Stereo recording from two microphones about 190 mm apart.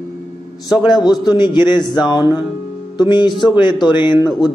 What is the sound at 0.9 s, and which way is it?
Speech, 20° left (ahead or behind).